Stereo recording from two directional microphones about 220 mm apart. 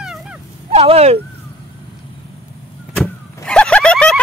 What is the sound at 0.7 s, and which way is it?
Speech, 25° right (ahead or behind).